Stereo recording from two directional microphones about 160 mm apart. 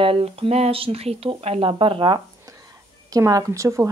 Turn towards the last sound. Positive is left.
turn(degrees=-20)  # may be behind; listen again after turning